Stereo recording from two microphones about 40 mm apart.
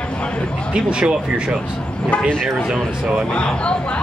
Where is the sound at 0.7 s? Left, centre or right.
Right.